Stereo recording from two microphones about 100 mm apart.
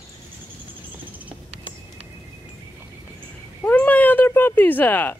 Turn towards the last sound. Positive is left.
turn(degrees=20)  # may be behind; listen again after turning